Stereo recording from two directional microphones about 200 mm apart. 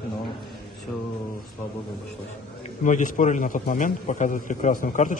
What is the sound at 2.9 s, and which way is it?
A man's voice, 40° left (ahead or behind).